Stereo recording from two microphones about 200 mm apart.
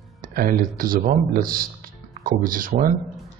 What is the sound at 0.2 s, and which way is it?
Music, 45° right (ahead or behind).